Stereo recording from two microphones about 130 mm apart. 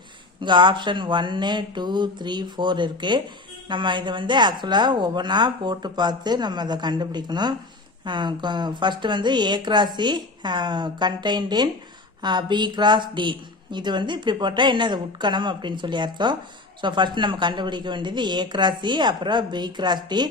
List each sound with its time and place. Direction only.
0.4 s a woman's voice: 35° right (ahead or behind)